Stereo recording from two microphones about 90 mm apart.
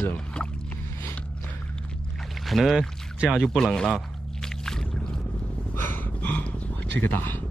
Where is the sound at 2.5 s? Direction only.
Centre (ahead or behind).